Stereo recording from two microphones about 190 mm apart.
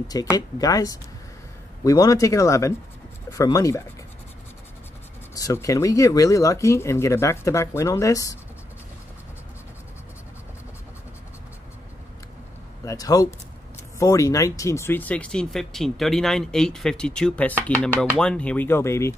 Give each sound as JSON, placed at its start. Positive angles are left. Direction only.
{"t": 0.1, "sound": "speech", "side_deg": 20}
{"t": 5.3, "sound": "speech", "side_deg": 15}
{"t": 12.8, "sound": "speech", "side_deg": 20}